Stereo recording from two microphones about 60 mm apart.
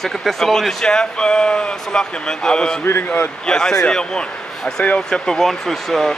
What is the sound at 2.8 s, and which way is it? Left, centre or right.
Speech, left.